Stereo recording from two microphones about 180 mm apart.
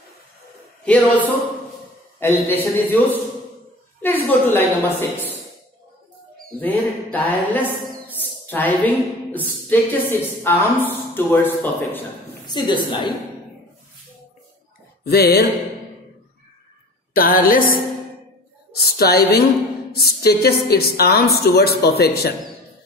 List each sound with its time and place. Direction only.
0.8 s a woman's voice: 5° left (ahead or behind)
6.6 s a woman's voice: 10° left (ahead or behind)
12.4 s a woman's voice: 25° left (ahead or behind)
15.0 s a woman's voice: 65° left (ahead or behind)
17.1 s a sound: 55° left (ahead or behind)
18.7 s a woman's voice: 60° left (ahead or behind)